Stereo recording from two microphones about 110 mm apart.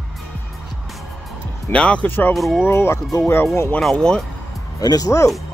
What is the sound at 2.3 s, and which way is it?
Speech, centre (ahead or behind).